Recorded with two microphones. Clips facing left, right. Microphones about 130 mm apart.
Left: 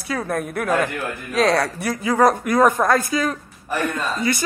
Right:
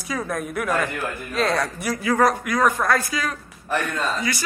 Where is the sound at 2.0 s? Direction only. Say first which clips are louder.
Left 3 dB; 15° left (ahead or behind).